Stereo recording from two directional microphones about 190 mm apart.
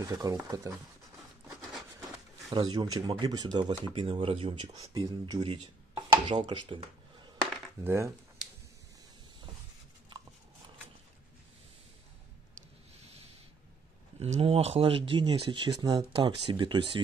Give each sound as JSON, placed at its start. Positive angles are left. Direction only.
{"t": 0.0, "sound": "speech", "side_deg": -15}
{"t": 2.5, "sound": "speech", "side_deg": -20}
{"t": 7.8, "sound": "speech", "side_deg": -15}
{"t": 14.2, "sound": "speech", "side_deg": -30}